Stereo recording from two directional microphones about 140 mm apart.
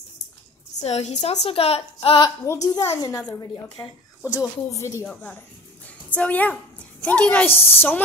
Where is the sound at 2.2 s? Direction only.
25° left (ahead or behind).